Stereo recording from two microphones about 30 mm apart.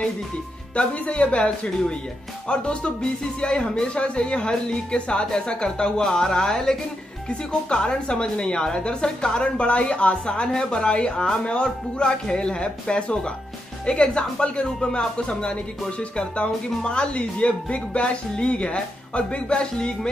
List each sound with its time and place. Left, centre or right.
0.9 s speech: left
9.6 s speech: left